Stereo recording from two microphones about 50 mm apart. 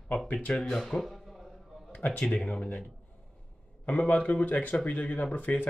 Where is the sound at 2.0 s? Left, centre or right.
Left.